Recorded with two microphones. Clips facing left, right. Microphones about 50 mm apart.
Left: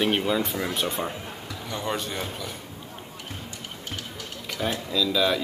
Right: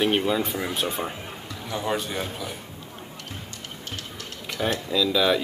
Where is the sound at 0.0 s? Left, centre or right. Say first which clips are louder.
Right 1 dB; centre.